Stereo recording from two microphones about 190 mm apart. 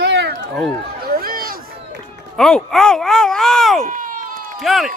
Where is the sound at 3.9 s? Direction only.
45° right (ahead or behind).